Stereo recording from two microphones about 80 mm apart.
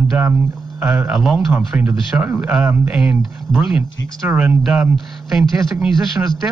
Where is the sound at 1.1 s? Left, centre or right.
Centre.